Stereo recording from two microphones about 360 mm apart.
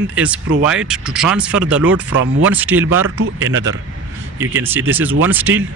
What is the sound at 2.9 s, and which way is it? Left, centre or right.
Speech, right.